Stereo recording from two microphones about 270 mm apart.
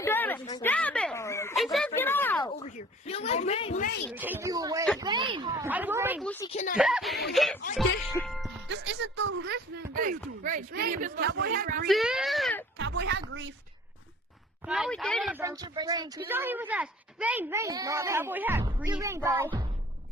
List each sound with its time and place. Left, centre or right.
0.0 s a sound: centre
2.4 s speech: left
4.1 s speech: centre
6.5 s speech: left
6.8 s a child's voice: centre
8.6 s speech: right
11.9 s a child's voice: centre
12.7 s speech: right
14.7 s a child's voice: centre
15.4 s speech: centre